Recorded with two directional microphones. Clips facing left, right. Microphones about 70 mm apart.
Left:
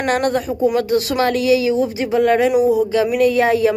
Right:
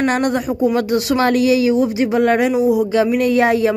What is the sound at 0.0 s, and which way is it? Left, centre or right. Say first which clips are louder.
Speech: right 1 dB; right.